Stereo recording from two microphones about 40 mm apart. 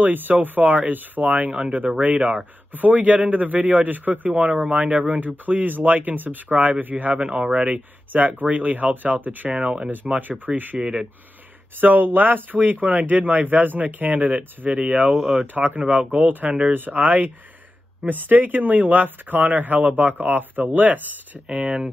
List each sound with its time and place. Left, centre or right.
0.0 s speech: right
1.5 s speech: right
9.6 s speech: right
10.0 s speech: right
11.8 s speech: right
15.4 s speech: right
15.8 s speech: right
16.1 s speech: right
21.5 s speech: right